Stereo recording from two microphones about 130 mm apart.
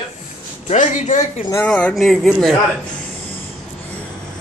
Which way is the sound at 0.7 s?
65° left (ahead or behind).